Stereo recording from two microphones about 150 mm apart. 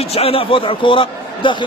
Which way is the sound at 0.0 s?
40° left (ahead or behind).